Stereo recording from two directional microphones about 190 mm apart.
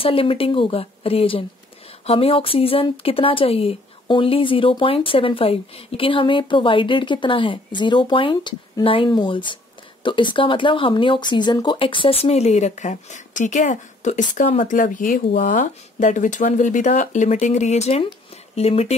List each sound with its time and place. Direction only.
0.0 s speech: 30° left (ahead or behind)